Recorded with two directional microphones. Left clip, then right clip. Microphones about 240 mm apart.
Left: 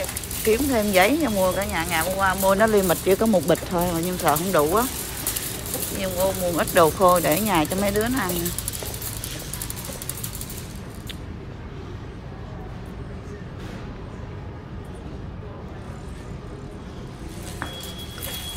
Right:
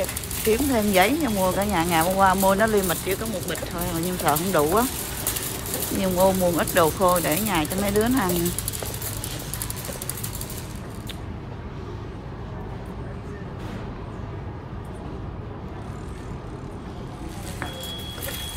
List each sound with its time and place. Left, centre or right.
0.5 s speech: centre
6.4 s speech: centre